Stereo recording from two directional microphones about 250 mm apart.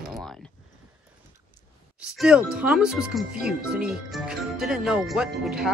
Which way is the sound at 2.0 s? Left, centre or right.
Centre.